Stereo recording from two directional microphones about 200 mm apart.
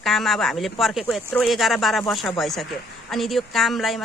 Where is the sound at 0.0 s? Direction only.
Centre (ahead or behind).